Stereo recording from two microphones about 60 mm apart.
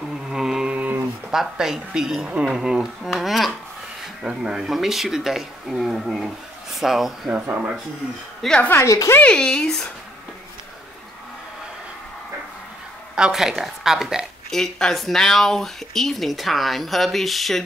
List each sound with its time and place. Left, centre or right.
0.1 s a sound: centre
0.7 s a sound: right
1.3 s a woman's voice: centre
7.2 s speech: right
8.4 s speech: centre
8.7 s a woman's voice: left
9.2 s speech: centre
13.1 s a woman's voice: centre
14.5 s speech: centre